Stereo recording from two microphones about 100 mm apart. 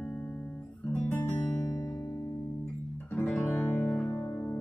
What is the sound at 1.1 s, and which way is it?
Music, 20° left (ahead or behind).